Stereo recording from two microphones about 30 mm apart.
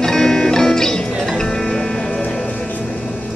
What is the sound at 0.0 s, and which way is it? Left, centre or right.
Music, centre.